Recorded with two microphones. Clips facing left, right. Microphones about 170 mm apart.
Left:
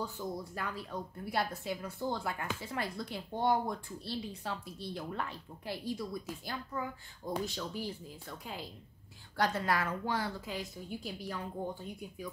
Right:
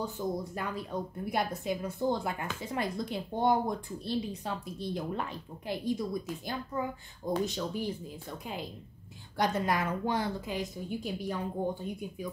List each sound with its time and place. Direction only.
0.2 s speech: 20° right (ahead or behind)